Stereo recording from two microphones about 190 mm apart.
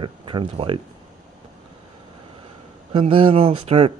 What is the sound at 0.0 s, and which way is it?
Speech, 25° right (ahead or behind).